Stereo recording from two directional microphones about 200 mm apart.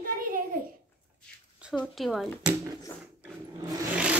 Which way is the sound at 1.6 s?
5° right (ahead or behind).